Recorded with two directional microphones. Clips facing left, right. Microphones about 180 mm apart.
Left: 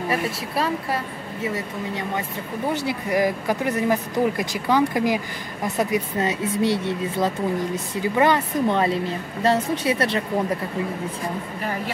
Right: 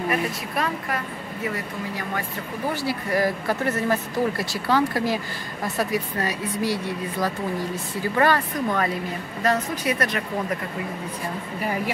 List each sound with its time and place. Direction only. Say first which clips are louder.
0.1 s speech: left 1 dB; 30° left (ahead or behind)
11.6 s a woman's voice: right 3 dB; 10° right (ahead or behind)